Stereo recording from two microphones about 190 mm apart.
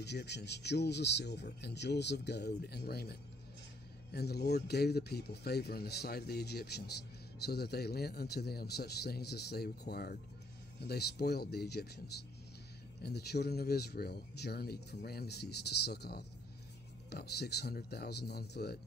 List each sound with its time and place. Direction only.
0.0 s speech: 60° left (ahead or behind)
13.0 s speech: 60° left (ahead or behind)